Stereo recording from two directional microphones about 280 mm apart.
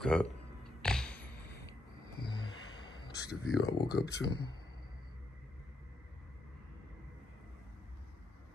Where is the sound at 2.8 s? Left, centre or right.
Centre.